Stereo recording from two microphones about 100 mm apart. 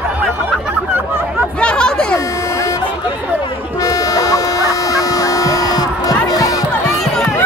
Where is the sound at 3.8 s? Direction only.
35° left (ahead or behind).